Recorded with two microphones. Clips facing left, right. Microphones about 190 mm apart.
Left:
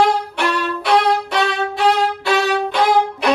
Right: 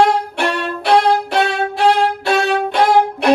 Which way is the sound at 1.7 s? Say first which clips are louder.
Right 3 dB; 55° right (ahead or behind).